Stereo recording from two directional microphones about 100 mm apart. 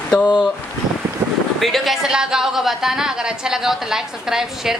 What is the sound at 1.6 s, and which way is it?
A woman's voice, centre (ahead or behind).